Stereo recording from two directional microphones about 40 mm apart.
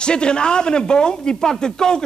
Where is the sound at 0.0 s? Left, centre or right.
Left.